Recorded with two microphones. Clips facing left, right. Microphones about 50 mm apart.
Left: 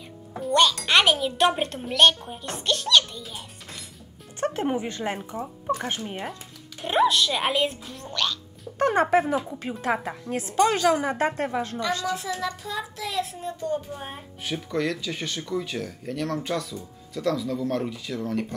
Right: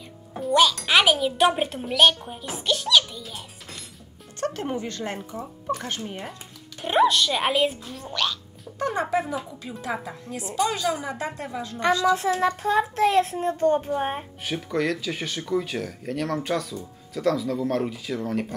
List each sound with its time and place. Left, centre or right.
0.4 s speech: centre
4.4 s speech: centre
6.8 s speech: centre
8.7 s a woman's voice: left
12.0 s speech: right
12.9 s child singing: right
14.4 s speech: centre